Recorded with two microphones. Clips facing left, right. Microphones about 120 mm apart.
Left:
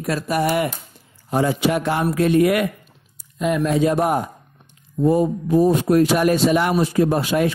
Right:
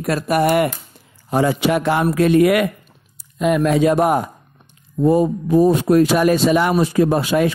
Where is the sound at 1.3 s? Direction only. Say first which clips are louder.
Right 2 dB; 85° right.